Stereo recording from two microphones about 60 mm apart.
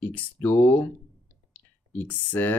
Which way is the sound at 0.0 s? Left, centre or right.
Left.